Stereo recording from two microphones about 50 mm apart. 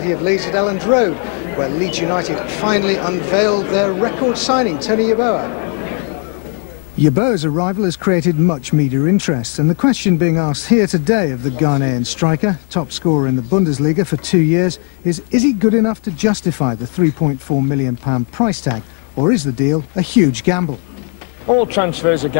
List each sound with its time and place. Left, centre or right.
0.1 s a man's voice: centre
7.2 s a man's voice: centre
17.5 s speech: left
18.0 s speech: centre
18.5 s a man's voice: centre